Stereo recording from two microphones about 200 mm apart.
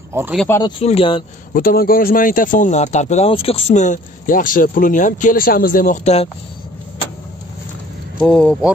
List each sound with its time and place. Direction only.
0.1 s speech: 10° right (ahead or behind)
0.5 s speech: 20° left (ahead or behind)
1.5 s speech: 45° left (ahead or behind)
8.2 s speech: 5° left (ahead or behind)